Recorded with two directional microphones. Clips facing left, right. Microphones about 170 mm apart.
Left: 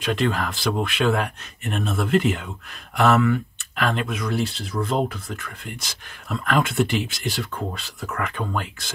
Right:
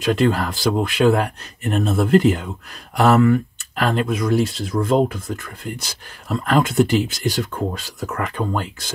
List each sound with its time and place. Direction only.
0.0 s speech: 35° right (ahead or behind)